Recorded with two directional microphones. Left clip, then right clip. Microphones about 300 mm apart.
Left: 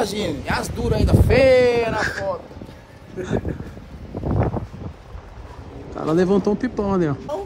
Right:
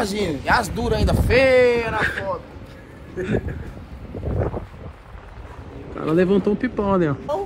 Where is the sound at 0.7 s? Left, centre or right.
Centre.